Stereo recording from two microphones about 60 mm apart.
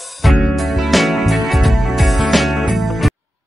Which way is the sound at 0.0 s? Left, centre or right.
Centre.